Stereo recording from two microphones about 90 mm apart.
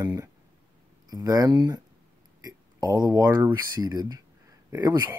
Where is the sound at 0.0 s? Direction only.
30° right (ahead or behind).